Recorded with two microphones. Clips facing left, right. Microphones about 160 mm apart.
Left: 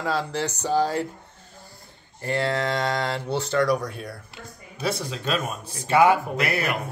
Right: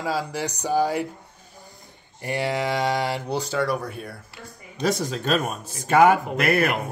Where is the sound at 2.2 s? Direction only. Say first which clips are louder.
Even; 15° right (ahead or behind).